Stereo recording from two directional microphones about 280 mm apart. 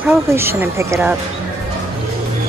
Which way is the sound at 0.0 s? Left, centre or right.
Centre.